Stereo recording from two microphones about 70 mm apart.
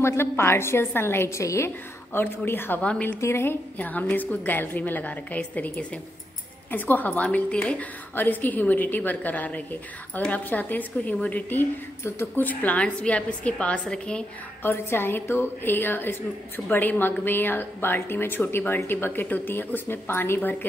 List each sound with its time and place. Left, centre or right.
0.0 s a woman's voice: left
2.1 s a woman's voice: left
2.8 s a woman's voice: centre
3.2 s a woman's voice: left
3.7 s a woman's voice: left
14.6 s a woman's voice: left